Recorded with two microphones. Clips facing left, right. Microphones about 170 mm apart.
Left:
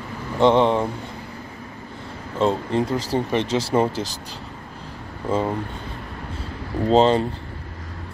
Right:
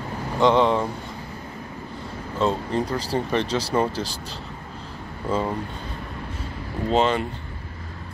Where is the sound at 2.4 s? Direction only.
25° left (ahead or behind).